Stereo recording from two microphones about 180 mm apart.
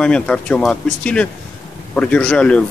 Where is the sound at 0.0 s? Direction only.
5° left (ahead or behind).